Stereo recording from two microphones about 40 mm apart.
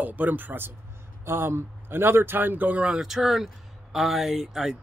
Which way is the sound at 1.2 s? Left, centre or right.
Right.